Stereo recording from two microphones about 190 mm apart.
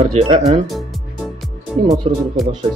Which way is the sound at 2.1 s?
30° right (ahead or behind).